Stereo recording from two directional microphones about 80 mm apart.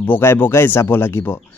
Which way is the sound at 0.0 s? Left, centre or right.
Left.